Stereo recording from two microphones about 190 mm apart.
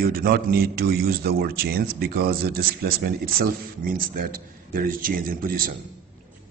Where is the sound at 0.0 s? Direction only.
50° right (ahead or behind).